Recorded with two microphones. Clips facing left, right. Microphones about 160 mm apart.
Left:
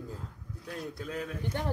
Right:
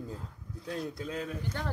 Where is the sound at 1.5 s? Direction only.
15° left (ahead or behind).